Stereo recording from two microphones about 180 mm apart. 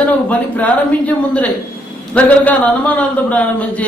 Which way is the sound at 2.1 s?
10° left (ahead or behind).